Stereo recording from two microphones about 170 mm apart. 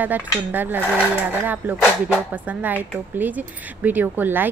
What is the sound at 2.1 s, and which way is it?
Speech, 10° right (ahead or behind).